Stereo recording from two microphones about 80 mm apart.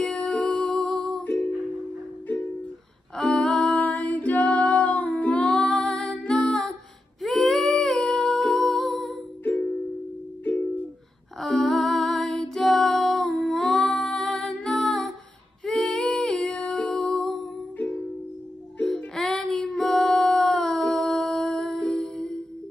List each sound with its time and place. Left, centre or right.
0.0 s music: centre
3.2 s music: centre
9.4 s music: centre
11.3 s music: centre
15.6 s female singing: centre
18.8 s music: centre
19.1 s child singing: centre
19.9 s music: centre